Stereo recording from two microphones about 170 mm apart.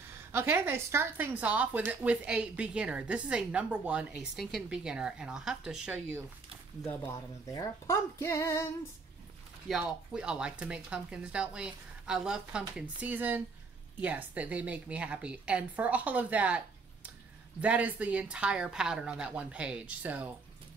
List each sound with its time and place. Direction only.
0.3 s a woman's voice: 15° right (ahead or behind)
6.9 s speech: 20° left (ahead or behind)
9.7 s a woman's voice: 5° right (ahead or behind)